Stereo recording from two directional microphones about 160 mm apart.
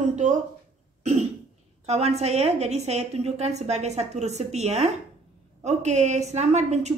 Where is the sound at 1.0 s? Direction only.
45° right (ahead or behind).